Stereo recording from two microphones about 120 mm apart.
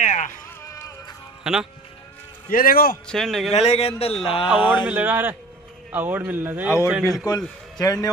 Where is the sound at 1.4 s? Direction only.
5° right (ahead or behind).